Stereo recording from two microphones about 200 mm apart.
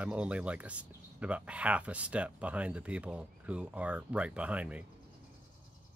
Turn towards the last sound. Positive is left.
turn(degrees=-5)  # may be behind; listen again after turning